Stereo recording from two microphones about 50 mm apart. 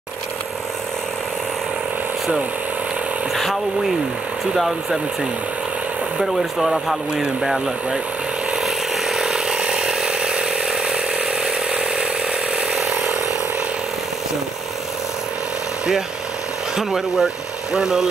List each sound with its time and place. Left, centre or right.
4.6 s speech: centre
6.1 s speech: centre
8.6 s a sound: centre
16.7 s speech: centre